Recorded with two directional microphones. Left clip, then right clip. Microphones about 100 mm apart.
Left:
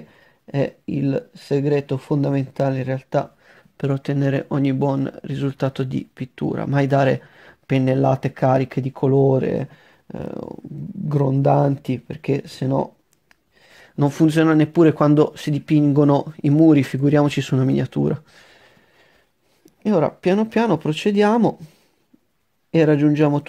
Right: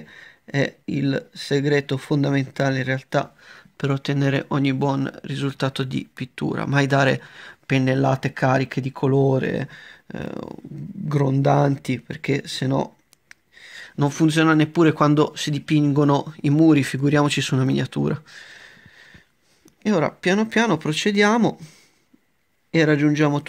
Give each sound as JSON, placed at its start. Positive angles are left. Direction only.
{"t": 0.1, "sound": "speech", "side_deg": 50}
{"t": 19.8, "sound": "speech", "side_deg": 55}
{"t": 22.7, "sound": "speech", "side_deg": 65}